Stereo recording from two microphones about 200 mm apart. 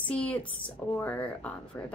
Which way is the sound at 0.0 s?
5° left (ahead or behind).